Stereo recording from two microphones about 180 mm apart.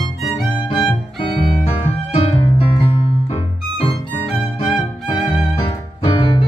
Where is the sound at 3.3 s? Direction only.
30° left (ahead or behind).